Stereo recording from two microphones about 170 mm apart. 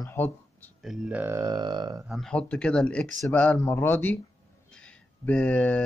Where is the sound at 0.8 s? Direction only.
5° right (ahead or behind); by 2.0 s 25° right (ahead or behind).